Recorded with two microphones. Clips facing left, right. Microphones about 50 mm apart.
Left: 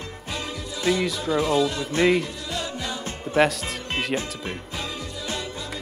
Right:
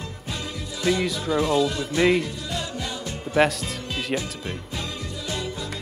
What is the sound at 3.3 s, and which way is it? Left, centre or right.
Music, centre.